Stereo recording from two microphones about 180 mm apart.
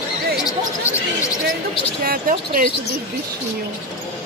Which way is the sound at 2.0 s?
50° right (ahead or behind).